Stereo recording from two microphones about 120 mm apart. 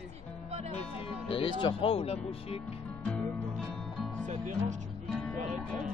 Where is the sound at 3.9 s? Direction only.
Centre (ahead or behind).